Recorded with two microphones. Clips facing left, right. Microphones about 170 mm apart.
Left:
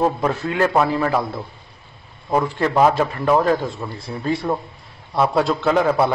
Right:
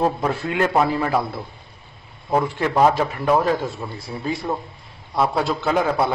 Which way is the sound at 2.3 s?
Centre (ahead or behind).